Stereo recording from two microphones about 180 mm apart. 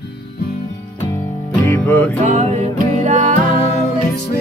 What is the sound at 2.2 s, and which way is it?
Music, 40° right (ahead or behind).